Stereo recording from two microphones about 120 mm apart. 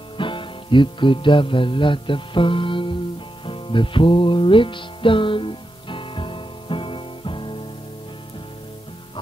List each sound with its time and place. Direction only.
0.2 s music: 45° left (ahead or behind)